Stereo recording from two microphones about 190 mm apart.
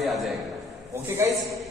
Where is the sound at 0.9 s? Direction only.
15° right (ahead or behind).